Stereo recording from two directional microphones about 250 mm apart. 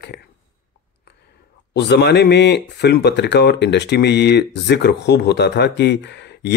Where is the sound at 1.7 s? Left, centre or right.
Left.